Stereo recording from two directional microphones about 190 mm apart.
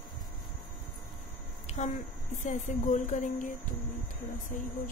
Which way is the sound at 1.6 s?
35° left (ahead or behind).